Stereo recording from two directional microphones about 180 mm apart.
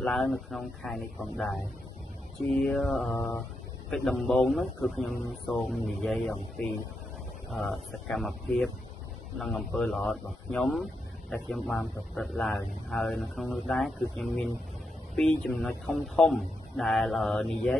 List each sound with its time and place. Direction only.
0.0 s speech: centre (ahead or behind)
2.6 s speech: 5° left (ahead or behind)
3.1 s mantra: 15° left (ahead or behind)
3.9 s speech: centre (ahead or behind)